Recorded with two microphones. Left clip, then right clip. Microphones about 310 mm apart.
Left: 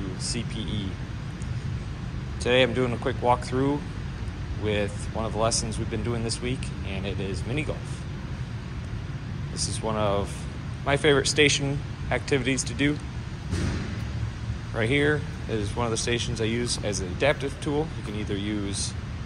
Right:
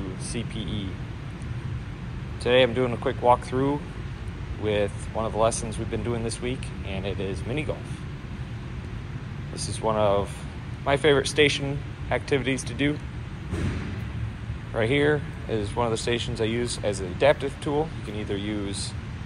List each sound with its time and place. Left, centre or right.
0.3 s speech: centre
2.4 s speech: centre
9.8 s speech: centre
14.7 s speech: centre